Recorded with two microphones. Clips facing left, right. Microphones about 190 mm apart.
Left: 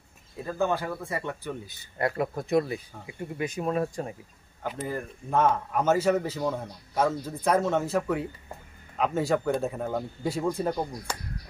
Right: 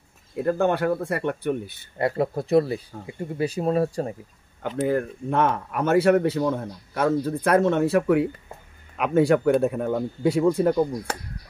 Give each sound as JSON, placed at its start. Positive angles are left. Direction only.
{"t": 0.4, "sound": "speech", "side_deg": -65}
{"t": 2.0, "sound": "speech", "side_deg": -25}
{"t": 4.7, "sound": "speech", "side_deg": -70}